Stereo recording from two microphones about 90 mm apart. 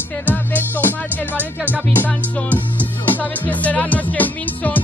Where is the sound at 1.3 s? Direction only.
20° right (ahead or behind).